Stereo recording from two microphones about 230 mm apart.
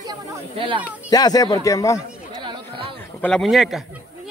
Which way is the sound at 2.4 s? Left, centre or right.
Right.